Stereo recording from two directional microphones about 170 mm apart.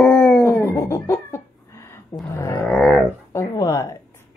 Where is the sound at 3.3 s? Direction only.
20° left (ahead or behind).